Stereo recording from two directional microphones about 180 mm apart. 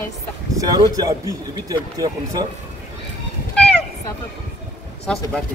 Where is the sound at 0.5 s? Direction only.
20° right (ahead or behind).